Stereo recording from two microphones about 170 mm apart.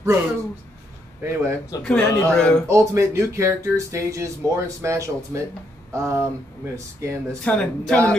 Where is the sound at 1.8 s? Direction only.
5° left (ahead or behind).